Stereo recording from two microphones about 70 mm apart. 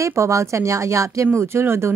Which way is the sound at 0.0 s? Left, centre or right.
Right.